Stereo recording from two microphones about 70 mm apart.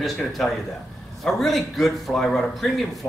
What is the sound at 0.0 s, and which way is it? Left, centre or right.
Speech, centre.